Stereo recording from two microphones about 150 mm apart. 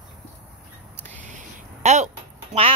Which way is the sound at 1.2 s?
55° right (ahead or behind).